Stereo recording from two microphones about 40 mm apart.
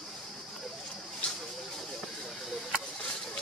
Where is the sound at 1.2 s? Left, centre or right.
Left.